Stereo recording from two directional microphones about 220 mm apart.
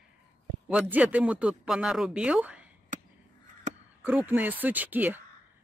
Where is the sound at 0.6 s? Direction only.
5° right (ahead or behind).